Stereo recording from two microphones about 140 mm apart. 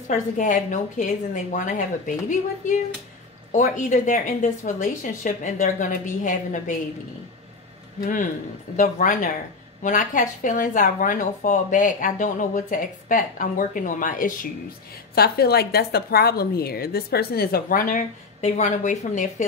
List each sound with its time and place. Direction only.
0.1 s a woman's voice: 65° left (ahead or behind)
8.0 s speech: 70° left (ahead or behind)
15.1 s a woman's voice: 90° left; by 19.4 s 60° left (ahead or behind)